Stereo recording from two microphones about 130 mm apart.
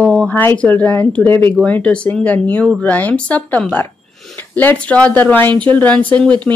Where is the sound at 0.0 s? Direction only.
5° left (ahead or behind).